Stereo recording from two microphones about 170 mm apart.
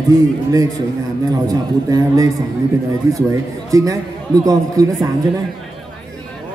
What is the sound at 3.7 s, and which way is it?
Speech, 20° right (ahead or behind).